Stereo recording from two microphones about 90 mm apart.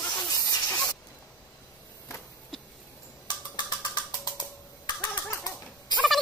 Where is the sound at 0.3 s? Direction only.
40° left (ahead or behind).